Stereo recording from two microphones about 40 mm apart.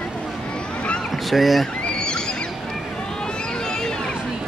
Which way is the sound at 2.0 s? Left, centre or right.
Left.